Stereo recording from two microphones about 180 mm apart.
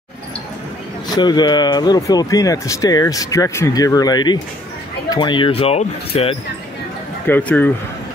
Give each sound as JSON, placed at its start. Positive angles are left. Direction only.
{"t": 1.1, "sound": "speech", "side_deg": 25}
{"t": 7.2, "sound": "speech", "side_deg": 10}